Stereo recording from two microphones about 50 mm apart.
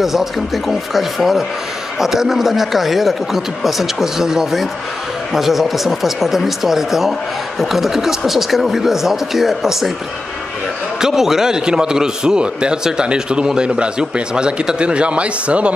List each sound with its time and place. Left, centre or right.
0.0 s speech: centre
11.0 s a man's voice: centre; by 15.7 s right